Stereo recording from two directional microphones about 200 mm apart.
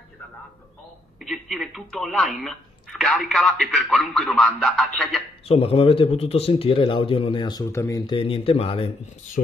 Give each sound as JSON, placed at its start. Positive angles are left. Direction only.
{"t": 1.2, "sound": "speech", "side_deg": 0}
{"t": 5.4, "sound": "speech", "side_deg": 30}